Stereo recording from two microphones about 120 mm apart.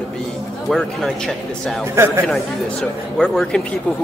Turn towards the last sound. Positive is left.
turn(degrees=5)  # may be behind; listen again after turning